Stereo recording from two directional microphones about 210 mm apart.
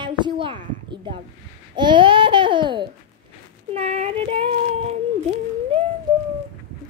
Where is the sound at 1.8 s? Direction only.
20° right (ahead or behind).